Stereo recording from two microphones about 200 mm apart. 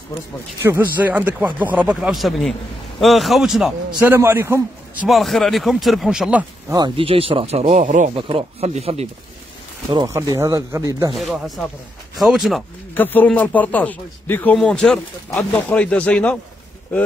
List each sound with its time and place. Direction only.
0.6 s a man's voice: 10° right (ahead or behind)
5.0 s a man's voice: centre (ahead or behind)
6.7 s speech: 25° right (ahead or behind); by 8.1 s 40° right (ahead or behind)
8.1 s speech: 25° right (ahead or behind)
9.8 s speech: 20° right (ahead or behind)
11.1 s a man's voice: centre (ahead or behind)
12.9 s speech: 10° left (ahead or behind)